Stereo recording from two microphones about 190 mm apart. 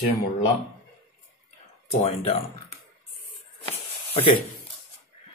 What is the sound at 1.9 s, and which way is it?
Speech, 30° left (ahead or behind).